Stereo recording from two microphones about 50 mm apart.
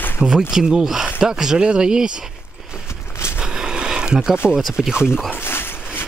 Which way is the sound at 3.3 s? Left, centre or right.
Centre.